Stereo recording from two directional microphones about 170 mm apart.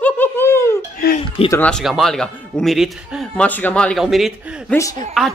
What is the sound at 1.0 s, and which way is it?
Chuckle, 65° left (ahead or behind).